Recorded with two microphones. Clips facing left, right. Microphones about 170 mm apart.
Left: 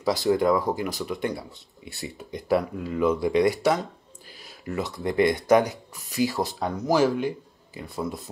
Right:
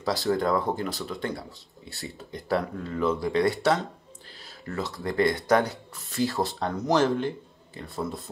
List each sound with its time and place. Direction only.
0.0 s speech: 20° left (ahead or behind)
6.6 s speech: 5° left (ahead or behind)